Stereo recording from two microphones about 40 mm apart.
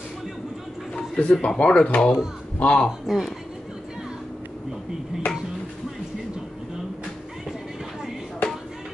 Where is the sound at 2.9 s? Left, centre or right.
Centre.